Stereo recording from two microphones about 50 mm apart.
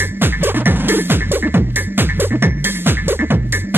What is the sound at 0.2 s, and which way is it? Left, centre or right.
Music, right.